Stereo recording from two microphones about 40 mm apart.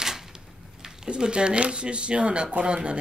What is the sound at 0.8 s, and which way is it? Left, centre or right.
Speech, centre.